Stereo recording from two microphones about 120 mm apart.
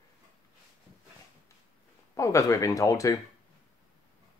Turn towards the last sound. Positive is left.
turn(degrees=25)  # may be behind; listen again after turning